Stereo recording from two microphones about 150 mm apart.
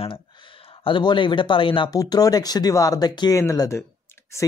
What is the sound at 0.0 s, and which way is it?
Speech, 40° left (ahead or behind).